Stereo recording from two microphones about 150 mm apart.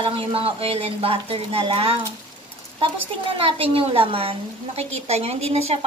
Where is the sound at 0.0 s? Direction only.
35° right (ahead or behind).